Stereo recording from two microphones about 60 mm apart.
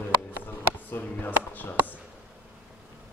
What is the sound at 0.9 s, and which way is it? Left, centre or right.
A man's voice, left.